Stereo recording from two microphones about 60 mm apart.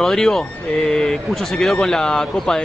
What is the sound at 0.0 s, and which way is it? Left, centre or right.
Speech, centre.